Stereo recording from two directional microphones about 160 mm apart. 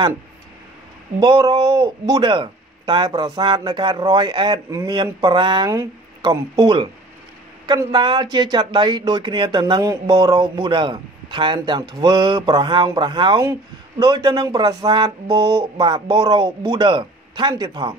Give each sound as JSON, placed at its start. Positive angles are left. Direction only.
{"t": 1.2, "sound": "speech", "side_deg": -25}